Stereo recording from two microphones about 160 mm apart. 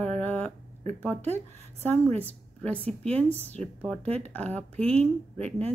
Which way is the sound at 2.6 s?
5° left (ahead or behind).